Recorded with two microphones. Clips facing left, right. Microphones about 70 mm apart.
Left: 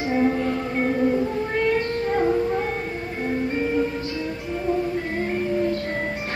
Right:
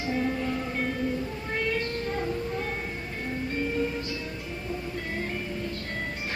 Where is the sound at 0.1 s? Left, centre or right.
Left.